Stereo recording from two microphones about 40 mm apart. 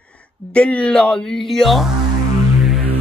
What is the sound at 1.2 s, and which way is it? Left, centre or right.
Speech, centre.